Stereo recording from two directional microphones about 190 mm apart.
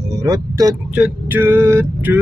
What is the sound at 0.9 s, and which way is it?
Speech, 10° right (ahead or behind).